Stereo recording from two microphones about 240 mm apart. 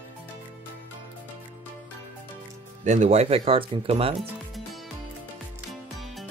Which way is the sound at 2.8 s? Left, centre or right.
Right.